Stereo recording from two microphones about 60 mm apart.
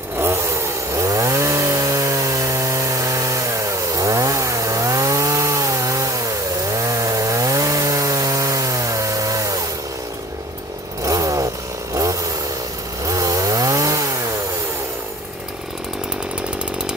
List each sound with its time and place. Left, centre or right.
0.2 s chainsaw: right
11.1 s chainsaw: right